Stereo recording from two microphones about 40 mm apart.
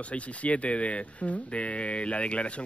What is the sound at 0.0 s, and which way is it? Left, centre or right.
Speech, left.